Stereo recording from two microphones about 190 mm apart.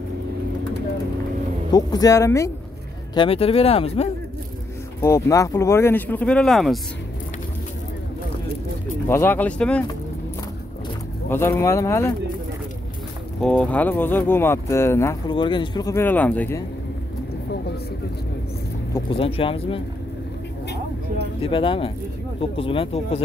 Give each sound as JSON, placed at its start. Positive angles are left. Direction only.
{"t": 1.7, "sound": "speech", "side_deg": 20}
{"t": 3.2, "sound": "speech", "side_deg": 30}
{"t": 5.0, "sound": "speech", "side_deg": 15}
{"t": 9.0, "sound": "speech", "side_deg": 10}
{"t": 11.2, "sound": "speech", "side_deg": 10}
{"t": 13.4, "sound": "speech", "side_deg": 5}
{"t": 15.3, "sound": "speech", "side_deg": 25}
{"t": 18.9, "sound": "speech", "side_deg": 30}
{"t": 21.4, "sound": "speech", "side_deg": 25}